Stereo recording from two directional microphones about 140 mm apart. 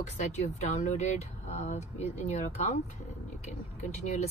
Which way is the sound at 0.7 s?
55° left (ahead or behind).